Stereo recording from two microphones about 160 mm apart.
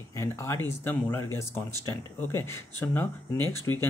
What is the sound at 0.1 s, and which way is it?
Speech, 15° left (ahead or behind).